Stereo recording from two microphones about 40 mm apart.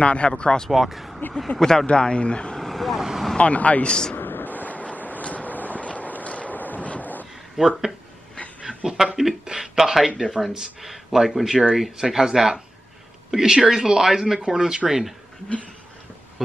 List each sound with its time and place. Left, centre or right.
0.0 s speech: left
0.4 s speech: centre
0.7 s speech: centre
1.6 s speech: centre
1.9 s speech: left
2.5 s vehicle: centre
3.0 s vehicle: centre
3.3 s speech: left
3.8 s speech: left
4.2 s a sound: left
7.5 s speech: centre
8.6 s a sound: centre
10.5 s speech: centre
16.4 s speech: centre